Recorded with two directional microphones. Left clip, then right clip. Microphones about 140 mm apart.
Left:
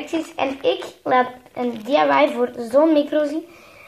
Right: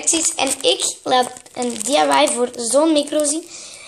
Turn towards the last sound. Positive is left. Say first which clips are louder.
# right 1 dB
turn(degrees=-15)  # may be behind; listen again after turning